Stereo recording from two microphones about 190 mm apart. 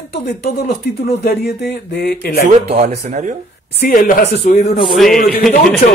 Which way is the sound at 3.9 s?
45° left (ahead or behind).